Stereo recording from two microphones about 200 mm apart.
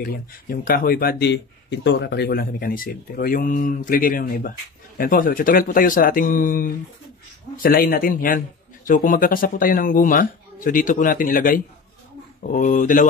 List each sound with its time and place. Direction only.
0.5 s speech: 45° left (ahead or behind)